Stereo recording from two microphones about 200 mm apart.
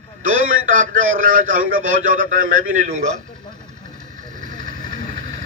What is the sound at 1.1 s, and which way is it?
A man's voice, 40° right (ahead or behind).